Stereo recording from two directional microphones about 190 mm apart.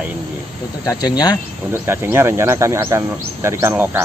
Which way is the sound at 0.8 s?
20° left (ahead or behind).